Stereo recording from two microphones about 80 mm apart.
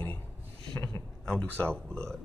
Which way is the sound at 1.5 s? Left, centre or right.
Centre.